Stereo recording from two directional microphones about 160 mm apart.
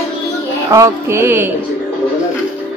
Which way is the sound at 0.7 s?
20° right (ahead or behind).